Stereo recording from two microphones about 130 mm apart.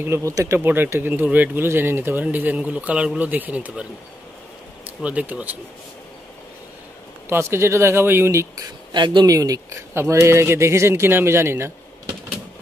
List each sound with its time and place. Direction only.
0.0 s speech: 20° right (ahead or behind)
0.6 s speech: 15° right (ahead or behind)
5.0 s speech: 10° right (ahead or behind)
7.2 s speech: 20° right (ahead or behind)
8.9 s speech: 35° right (ahead or behind); by 11.7 s 20° right (ahead or behind)